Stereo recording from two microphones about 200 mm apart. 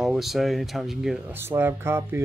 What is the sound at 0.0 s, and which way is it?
Speech, centre (ahead or behind).